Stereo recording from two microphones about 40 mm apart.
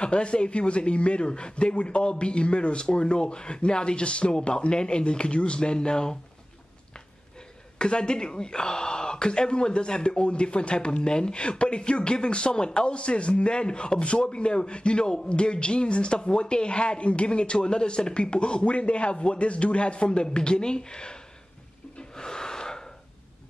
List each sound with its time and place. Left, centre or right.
0.0 s speech: left
7.8 s speech: left
22.1 s gasp: centre